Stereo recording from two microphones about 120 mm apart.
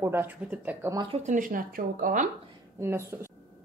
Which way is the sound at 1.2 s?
90° right.